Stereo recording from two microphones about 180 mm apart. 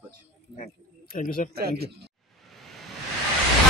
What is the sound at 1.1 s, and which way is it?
Speech, 50° left (ahead or behind).